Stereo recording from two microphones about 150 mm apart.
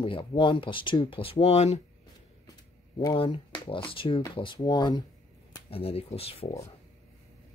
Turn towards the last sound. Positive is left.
turn(degrees=40)  # may be behind; listen again after turning